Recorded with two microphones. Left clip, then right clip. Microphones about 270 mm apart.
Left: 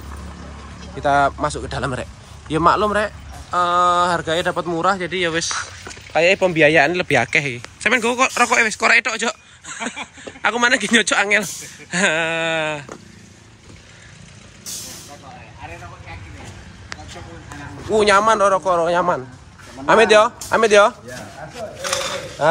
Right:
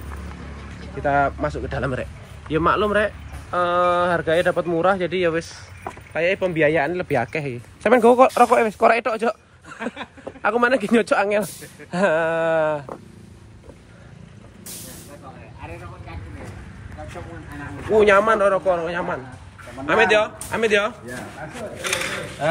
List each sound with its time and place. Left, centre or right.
1.0 s a man's voice: centre
6.1 s a man's voice: centre
17.8 s a man's voice: centre